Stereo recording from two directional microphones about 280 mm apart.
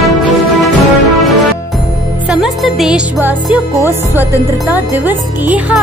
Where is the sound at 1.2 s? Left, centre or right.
Centre.